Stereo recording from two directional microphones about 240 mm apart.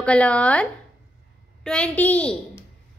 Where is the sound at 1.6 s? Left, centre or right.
Centre.